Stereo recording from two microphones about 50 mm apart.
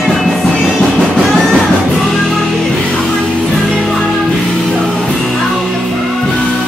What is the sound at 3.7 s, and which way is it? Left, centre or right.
Music, centre.